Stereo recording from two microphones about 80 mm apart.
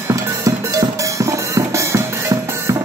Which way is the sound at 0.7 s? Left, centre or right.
Right.